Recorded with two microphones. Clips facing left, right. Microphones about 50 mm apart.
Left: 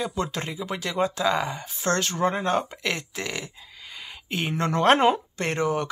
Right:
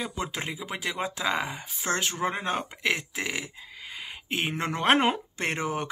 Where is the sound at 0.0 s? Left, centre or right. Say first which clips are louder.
Left 4 dB; centre.